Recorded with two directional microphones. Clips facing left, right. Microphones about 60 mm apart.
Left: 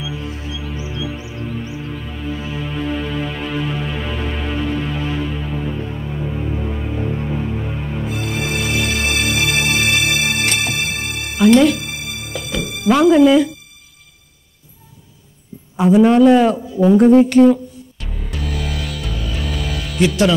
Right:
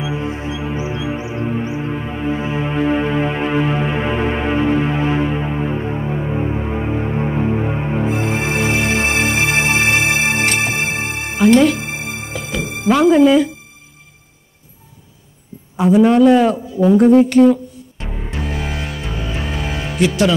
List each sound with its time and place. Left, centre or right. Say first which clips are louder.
0.0 s music: right 5 dB; right
17.9 s music: right 4 dB; right